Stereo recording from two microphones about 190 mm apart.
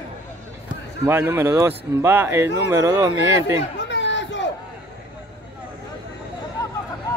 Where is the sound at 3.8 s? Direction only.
70° left (ahead or behind).